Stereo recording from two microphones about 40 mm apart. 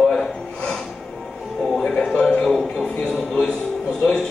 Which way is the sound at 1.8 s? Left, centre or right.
Centre.